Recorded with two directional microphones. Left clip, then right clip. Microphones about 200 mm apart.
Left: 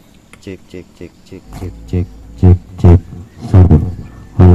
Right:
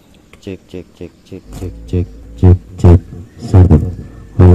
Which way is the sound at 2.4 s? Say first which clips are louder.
Right 1 dB; 15° right (ahead or behind).